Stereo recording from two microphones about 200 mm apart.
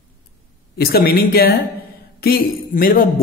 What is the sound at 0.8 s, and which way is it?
Speech, 50° left (ahead or behind).